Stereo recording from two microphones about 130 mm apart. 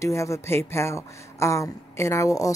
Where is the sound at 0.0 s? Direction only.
20° left (ahead or behind).